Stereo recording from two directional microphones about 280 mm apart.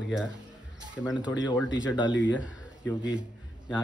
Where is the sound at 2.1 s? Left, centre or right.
Left.